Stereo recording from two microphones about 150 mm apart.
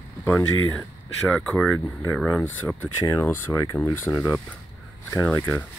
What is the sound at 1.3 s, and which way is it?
Speech, 5° left (ahead or behind).